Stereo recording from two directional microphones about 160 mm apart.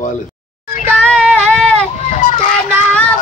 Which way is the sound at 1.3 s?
5° left (ahead or behind).